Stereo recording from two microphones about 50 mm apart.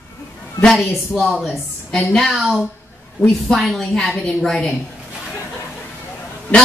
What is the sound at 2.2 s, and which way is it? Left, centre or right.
A woman's voice, centre.